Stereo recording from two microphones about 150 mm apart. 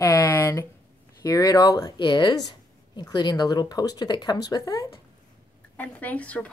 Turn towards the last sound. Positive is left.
turn(degrees=10)  # may be behind; listen again after turning